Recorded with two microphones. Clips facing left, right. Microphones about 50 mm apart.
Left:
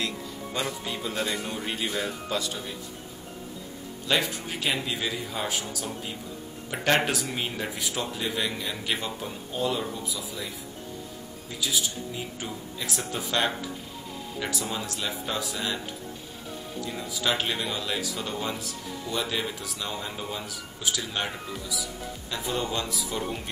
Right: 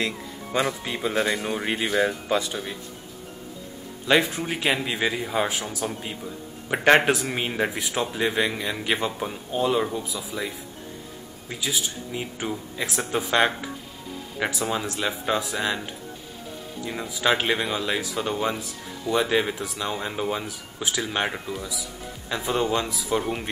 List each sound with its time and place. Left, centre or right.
0.0 s speech: right
4.1 s speech: right
11.6 s speech: right
16.8 s speech: right